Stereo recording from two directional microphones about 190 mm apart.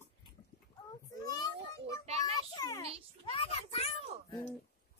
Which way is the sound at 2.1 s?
35° right (ahead or behind).